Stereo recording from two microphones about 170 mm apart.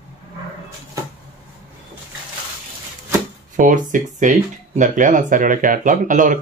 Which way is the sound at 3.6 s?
50° right (ahead or behind).